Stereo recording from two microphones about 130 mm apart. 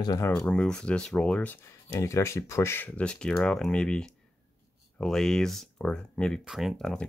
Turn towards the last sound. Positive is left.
turn(degrees=5)  # may be behind; listen again after turning